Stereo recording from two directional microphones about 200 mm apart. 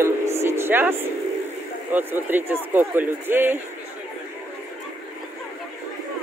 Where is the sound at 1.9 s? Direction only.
10° right (ahead or behind).